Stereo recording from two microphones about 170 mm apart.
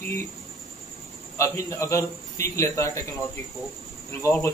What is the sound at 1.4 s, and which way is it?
A man's voice, 20° left (ahead or behind).